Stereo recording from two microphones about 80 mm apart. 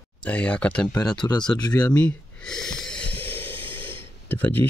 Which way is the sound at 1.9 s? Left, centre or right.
Centre.